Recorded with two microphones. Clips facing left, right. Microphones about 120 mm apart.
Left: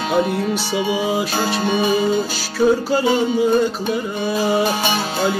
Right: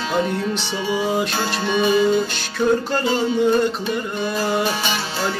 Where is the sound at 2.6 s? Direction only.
5° left (ahead or behind).